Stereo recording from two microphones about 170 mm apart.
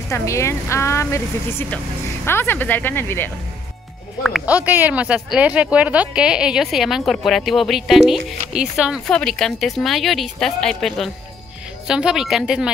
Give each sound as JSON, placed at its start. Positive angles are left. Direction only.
{"t": 0.1, "sound": "a woman's voice", "side_deg": 15}
{"t": 4.2, "sound": "speech", "side_deg": -5}